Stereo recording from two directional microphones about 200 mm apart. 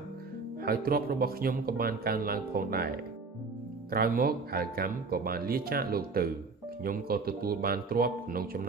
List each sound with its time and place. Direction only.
0.7 s speech: 50° right (ahead or behind)
3.9 s speech: 50° right (ahead or behind)